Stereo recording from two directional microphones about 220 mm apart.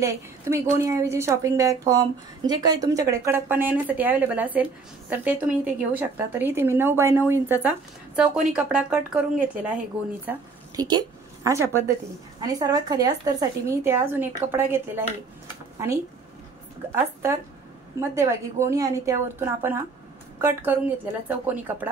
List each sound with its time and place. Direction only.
0.0 s a woman's voice: 15° right (ahead or behind)
10.8 s a woman's voice: 20° right (ahead or behind)
16.9 s a woman's voice: 10° right (ahead or behind)